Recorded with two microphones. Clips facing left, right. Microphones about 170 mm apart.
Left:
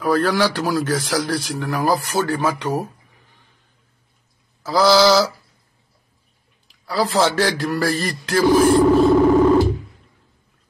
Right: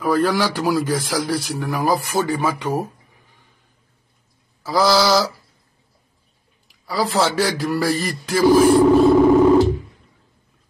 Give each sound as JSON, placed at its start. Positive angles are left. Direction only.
{"t": 0.0, "sound": "a man's voice", "side_deg": -5}
{"t": 4.6, "sound": "a man's voice", "side_deg": 0}
{"t": 6.9, "sound": "a man's voice", "side_deg": -5}